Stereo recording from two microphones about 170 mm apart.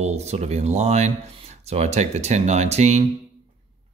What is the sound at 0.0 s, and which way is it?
Speech, 40° right (ahead or behind).